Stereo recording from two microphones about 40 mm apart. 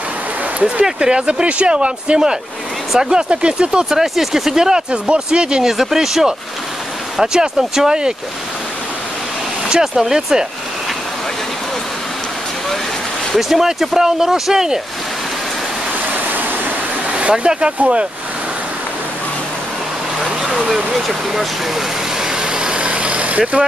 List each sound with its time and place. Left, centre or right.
0.6 s speech: right
0.9 s speech: right
4.0 s speech: centre
4.9 s speech: right
5.8 s speech: centre
9.7 s speech: centre
13.4 s speech: centre
17.1 s vehicle: right
17.5 s speech: right
20.7 s vehicle: centre; by 23.6 s right